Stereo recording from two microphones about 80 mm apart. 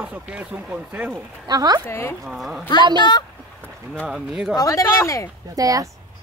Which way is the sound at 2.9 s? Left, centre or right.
Left.